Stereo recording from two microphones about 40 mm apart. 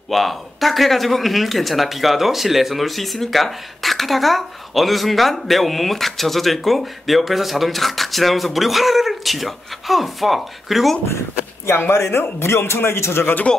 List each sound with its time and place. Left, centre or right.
0.1 s speech: centre
11.9 s a man's voice: left